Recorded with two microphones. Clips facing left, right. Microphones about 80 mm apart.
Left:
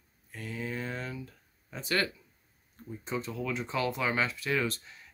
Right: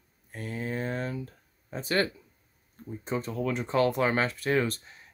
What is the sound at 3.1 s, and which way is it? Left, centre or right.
Speech, right.